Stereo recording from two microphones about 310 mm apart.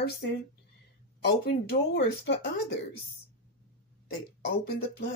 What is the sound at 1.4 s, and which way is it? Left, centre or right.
Speech, left.